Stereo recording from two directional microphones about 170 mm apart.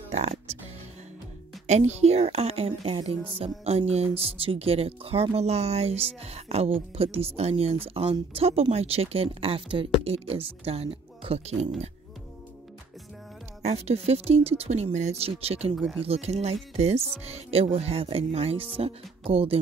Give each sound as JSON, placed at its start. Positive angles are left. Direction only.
{"t": 0.1, "sound": "speech", "side_deg": -40}
{"t": 1.7, "sound": "speech", "side_deg": -40}
{"t": 13.7, "sound": "speech", "side_deg": -35}
{"t": 15.7, "sound": "speech", "side_deg": -5}
{"t": 16.0, "sound": "speech", "side_deg": -35}